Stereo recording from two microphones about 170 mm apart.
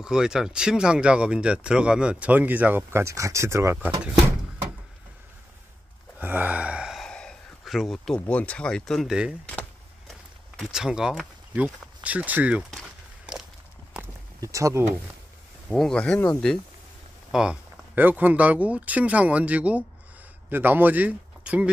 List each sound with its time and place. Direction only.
0.0 s speech: 5° right (ahead or behind)
6.1 s speech: 10° right (ahead or behind)
9.5 s vehicle: 10° left (ahead or behind)
10.6 s speech: 5° right (ahead or behind)
13.3 s walk: 5° right (ahead or behind)
14.4 s speech: 20° right (ahead or behind)
15.7 s speech: 5° left (ahead or behind)
17.3 s speech: 5° right (ahead or behind)